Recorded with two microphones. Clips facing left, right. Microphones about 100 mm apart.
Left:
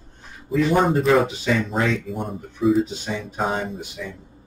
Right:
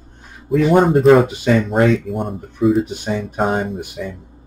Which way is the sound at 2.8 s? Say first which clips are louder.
Right 4 dB; 55° right (ahead or behind).